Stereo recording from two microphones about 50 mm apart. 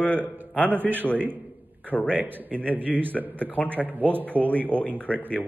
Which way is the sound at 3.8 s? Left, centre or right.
Right.